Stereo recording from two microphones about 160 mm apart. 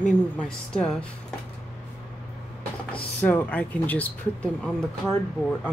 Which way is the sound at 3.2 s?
10° left (ahead or behind).